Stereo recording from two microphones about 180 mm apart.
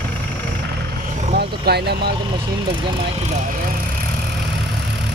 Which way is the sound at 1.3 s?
65° right (ahead or behind).